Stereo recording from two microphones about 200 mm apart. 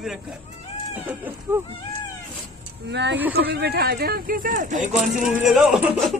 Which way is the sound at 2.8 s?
60° right (ahead or behind).